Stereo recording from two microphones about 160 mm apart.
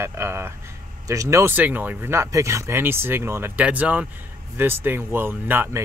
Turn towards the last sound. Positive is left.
turn(degrees=-15)  # may be behind; listen again after turning